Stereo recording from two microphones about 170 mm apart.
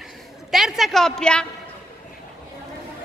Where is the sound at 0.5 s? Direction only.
Centre (ahead or behind).